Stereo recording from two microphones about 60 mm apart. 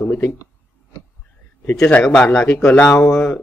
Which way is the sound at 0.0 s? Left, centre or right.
Left.